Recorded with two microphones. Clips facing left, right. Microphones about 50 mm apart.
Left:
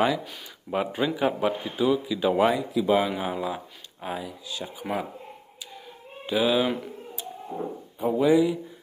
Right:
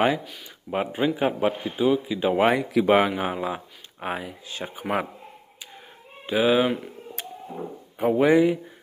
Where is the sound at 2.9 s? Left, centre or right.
Right.